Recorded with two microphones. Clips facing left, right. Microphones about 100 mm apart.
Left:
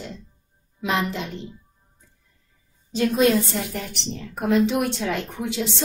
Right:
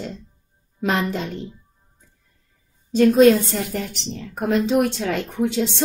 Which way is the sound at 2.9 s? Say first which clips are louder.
Right 6 dB; 50° right (ahead or behind).